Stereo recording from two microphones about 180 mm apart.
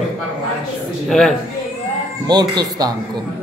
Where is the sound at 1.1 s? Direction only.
Centre (ahead or behind).